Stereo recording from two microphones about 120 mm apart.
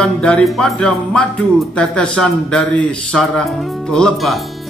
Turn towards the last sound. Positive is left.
turn(degrees=5)  # may be behind; listen again after turning